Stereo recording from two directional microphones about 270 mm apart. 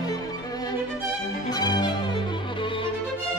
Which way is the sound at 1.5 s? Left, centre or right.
Centre.